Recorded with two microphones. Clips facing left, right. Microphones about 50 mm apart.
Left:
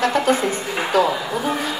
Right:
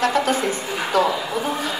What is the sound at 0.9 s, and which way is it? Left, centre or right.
Speech, right.